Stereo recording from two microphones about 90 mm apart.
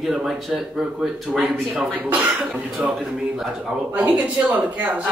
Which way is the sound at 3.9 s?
15° right (ahead or behind).